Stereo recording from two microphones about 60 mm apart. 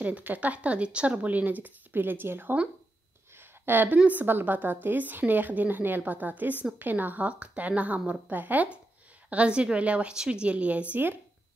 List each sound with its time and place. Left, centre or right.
0.0 s a woman's voice: right
3.3 s a sound: right
4.0 s a woman's voice: right